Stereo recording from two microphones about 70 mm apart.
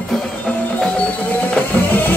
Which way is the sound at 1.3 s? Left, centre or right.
Left.